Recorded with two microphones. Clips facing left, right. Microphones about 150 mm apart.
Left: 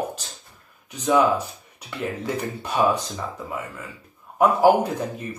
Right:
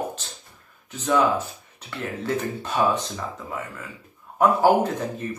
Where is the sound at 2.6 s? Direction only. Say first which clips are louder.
Left 2 dB; 10° left (ahead or behind).